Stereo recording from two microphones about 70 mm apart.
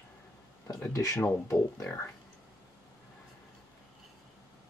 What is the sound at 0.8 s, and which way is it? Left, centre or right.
Speech, left.